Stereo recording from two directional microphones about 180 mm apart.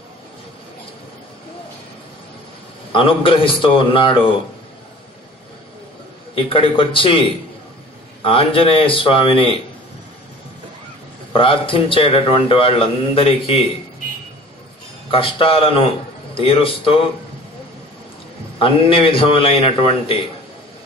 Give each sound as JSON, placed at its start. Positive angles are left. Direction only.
{"t": 2.9, "sound": "a man's voice", "side_deg": 30}
{"t": 6.3, "sound": "a man's voice", "side_deg": 30}
{"t": 11.3, "sound": "speech", "side_deg": 30}
{"t": 15.0, "sound": "speech", "side_deg": 30}
{"t": 18.6, "sound": "a man's voice", "side_deg": 30}